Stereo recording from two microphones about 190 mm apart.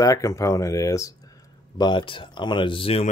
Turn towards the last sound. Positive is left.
turn(degrees=30)  # may be behind; listen again after turning